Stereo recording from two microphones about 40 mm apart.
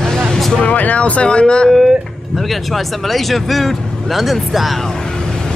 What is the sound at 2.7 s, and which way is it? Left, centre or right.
Speech, centre.